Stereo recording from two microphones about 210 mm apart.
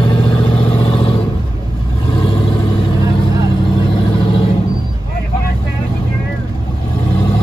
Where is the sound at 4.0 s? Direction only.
25° left (ahead or behind).